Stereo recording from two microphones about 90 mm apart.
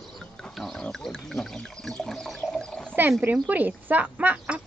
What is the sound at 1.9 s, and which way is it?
Water, 5° left (ahead or behind).